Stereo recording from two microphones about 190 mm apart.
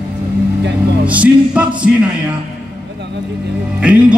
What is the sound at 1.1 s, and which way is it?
Music, 5° right (ahead or behind).